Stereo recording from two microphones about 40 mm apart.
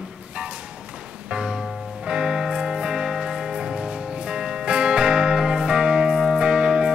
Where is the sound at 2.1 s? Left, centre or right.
Centre.